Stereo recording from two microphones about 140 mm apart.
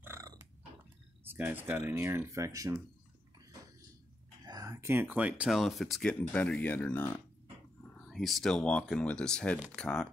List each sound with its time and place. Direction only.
0.0 s a sound: 20° right (ahead or behind)
1.2 s speech: 15° right (ahead or behind)
4.5 s speech: 25° right (ahead or behind); by 7.1 s 15° left (ahead or behind)
8.1 s speech: centre (ahead or behind)